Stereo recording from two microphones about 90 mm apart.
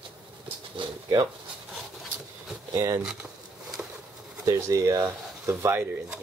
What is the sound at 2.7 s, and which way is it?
Speech, 35° right (ahead or behind).